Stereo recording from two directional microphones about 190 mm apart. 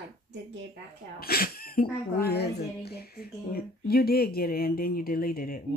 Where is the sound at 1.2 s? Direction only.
50° left (ahead or behind).